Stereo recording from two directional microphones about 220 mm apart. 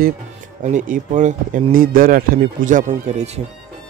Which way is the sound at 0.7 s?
35° right (ahead or behind).